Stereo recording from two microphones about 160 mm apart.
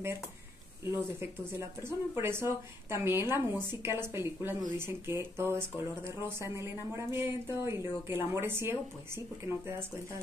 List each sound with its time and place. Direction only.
1.2 s speech: 15° right (ahead or behind)